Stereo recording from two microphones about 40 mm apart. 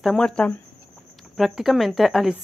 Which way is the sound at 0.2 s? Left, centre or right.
Left.